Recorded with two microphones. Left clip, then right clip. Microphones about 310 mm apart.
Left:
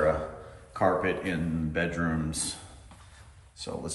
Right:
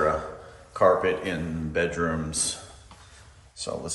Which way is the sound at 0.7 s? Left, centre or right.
Centre.